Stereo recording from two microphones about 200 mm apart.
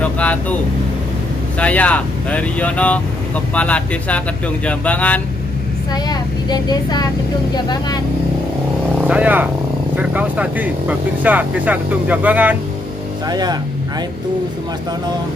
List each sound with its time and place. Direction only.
0.0 s speech: 5° left (ahead or behind)
1.6 s speech: 5° left (ahead or behind)
6.0 s speech: 20° left (ahead or behind)
9.0 s speech: 5° right (ahead or behind)
13.3 s speech: 20° right (ahead or behind)